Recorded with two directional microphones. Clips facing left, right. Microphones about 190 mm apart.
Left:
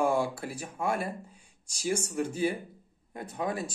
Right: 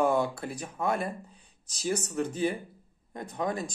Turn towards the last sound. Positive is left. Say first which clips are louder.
# right 1 dB
turn(degrees=5)  # may be behind; listen again after turning